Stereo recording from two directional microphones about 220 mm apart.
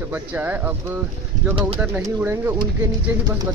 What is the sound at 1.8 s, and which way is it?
Speech, 15° right (ahead or behind).